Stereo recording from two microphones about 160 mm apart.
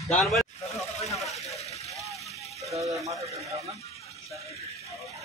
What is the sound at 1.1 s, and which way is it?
Vehicle, centre (ahead or behind).